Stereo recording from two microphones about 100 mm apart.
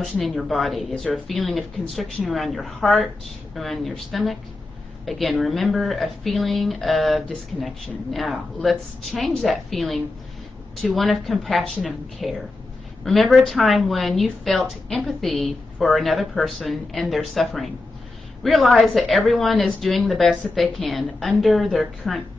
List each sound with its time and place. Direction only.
0.0 s a woman's voice: centre (ahead or behind)